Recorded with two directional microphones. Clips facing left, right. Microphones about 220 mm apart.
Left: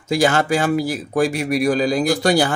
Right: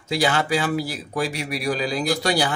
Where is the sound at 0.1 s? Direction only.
45° left (ahead or behind).